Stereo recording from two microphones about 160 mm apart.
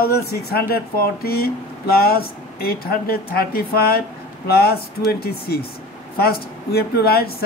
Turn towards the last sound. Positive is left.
turn(degrees=75)  # may be behind; listen again after turning